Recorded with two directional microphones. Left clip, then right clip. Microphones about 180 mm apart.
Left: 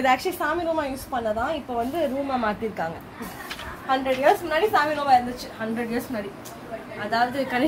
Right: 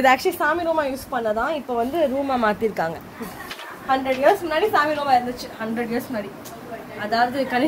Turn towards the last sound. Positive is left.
turn(degrees=-25)  # may be behind; listen again after turning